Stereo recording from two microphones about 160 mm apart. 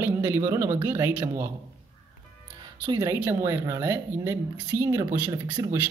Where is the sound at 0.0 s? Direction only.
15° right (ahead or behind).